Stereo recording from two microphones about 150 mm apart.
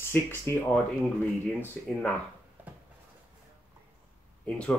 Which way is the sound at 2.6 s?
10° right (ahead or behind).